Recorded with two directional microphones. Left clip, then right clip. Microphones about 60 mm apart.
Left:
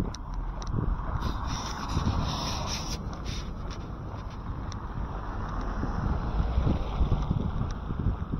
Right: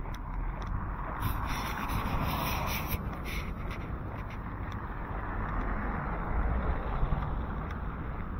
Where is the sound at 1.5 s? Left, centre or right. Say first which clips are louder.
Even; left.